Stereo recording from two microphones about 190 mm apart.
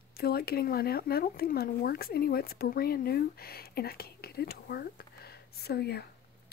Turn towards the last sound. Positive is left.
turn(degrees=60)  # may be behind; listen again after turning